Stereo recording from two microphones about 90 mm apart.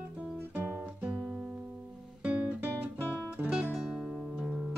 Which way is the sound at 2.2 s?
15° right (ahead or behind).